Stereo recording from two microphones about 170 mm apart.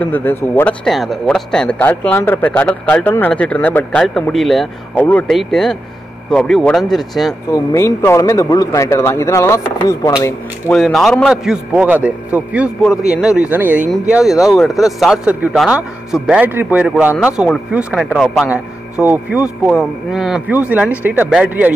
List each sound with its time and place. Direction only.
0.0 s speech: 10° left (ahead or behind)
0.8 s a man's voice: centre (ahead or behind)
7.5 s speech: 15° left (ahead or behind)
10.7 s a man's voice: centre (ahead or behind)
18.5 s speech: 10° right (ahead or behind)